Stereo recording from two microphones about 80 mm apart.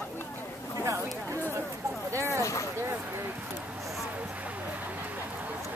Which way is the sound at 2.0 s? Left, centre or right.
Right.